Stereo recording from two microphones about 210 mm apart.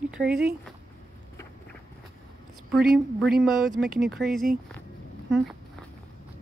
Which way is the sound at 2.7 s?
Centre (ahead or behind).